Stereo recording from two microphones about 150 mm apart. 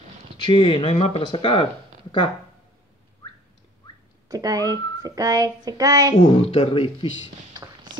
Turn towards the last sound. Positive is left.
turn(degrees=-30)  # may be behind; listen again after turning